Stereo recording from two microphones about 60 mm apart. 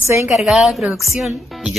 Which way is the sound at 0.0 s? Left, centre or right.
Right.